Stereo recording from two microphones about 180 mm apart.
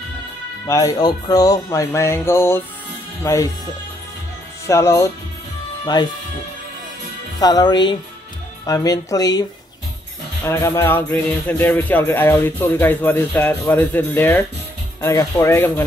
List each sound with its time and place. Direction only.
0.7 s music: 20° left (ahead or behind)
4.6 s music: 15° left (ahead or behind)
6.0 s speech: 25° left (ahead or behind)
7.3 s speech: 20° left (ahead or behind)
10.4 s music: 15° left (ahead or behind)